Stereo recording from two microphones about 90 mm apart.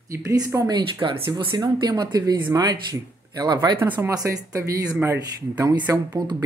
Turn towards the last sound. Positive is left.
turn(degrees=-50)  # may be behind; listen again after turning